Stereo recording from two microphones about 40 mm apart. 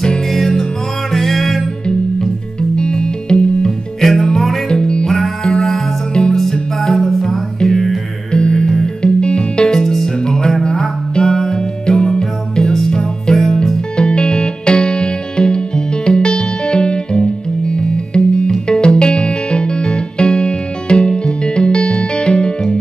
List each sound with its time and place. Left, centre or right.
0.3 s music: centre
1.6 s music: centre
4.0 s music: centre
4.6 s music: left
5.0 s music: centre
8.3 s music: left